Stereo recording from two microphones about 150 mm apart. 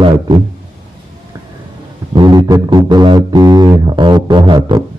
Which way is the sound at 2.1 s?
30° right (ahead or behind).